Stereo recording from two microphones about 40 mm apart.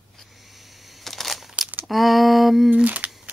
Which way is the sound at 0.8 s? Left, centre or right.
Centre.